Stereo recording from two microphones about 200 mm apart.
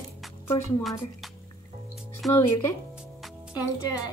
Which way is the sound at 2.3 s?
15° left (ahead or behind).